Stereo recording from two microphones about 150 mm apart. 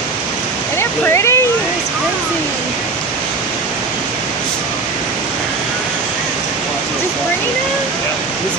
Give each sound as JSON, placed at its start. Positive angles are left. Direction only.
{"t": 0.7, "sound": "waterfall", "side_deg": 20}